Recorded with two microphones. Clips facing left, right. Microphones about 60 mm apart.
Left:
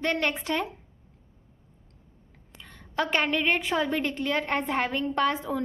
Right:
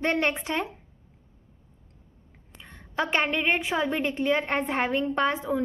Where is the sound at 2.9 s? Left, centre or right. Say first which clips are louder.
Even; centre.